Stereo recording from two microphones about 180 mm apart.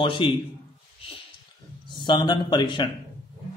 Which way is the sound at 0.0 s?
25° left (ahead or behind).